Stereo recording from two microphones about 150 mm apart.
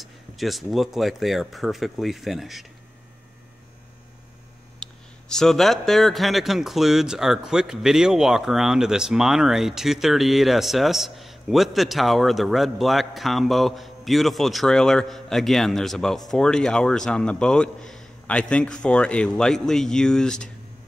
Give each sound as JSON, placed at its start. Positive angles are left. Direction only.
{"t": 0.0, "sound": "speech", "side_deg": 0}
{"t": 4.8, "sound": "a sound", "side_deg": 5}
{"t": 5.3, "sound": "speech", "side_deg": 5}